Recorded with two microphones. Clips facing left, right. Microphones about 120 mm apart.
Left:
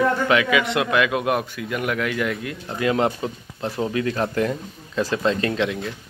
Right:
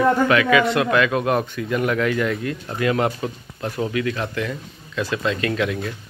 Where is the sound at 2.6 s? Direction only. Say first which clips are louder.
Left 1 dB; 20° left (ahead or behind).